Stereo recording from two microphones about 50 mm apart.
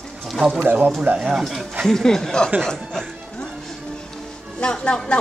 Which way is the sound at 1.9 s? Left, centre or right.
Centre.